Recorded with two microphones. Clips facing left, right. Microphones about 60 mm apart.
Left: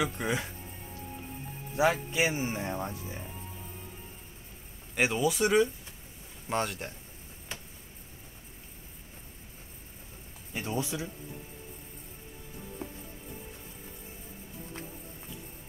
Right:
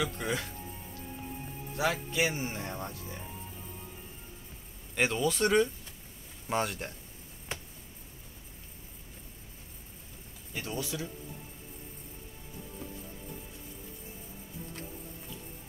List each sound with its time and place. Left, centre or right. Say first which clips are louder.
0.0 s speech: left 2 dB; centre
1.8 s speech: left 3 dB; left
4.9 s a man's voice: left 1 dB; centre
10.5 s speech: left 3 dB; left
12.8 s music: left 3 dB; left